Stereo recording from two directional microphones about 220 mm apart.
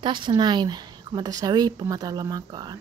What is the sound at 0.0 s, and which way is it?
A woman's voice, 20° right (ahead or behind).